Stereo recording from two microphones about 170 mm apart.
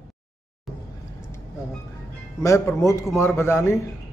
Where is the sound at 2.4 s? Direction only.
15° left (ahead or behind).